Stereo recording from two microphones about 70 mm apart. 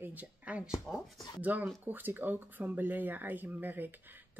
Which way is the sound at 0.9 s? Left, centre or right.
Centre.